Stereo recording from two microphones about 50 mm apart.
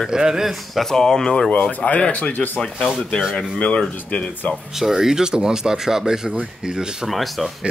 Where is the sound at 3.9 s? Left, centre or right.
Left.